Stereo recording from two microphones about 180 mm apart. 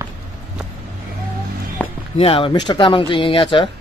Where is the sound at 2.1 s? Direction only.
30° left (ahead or behind).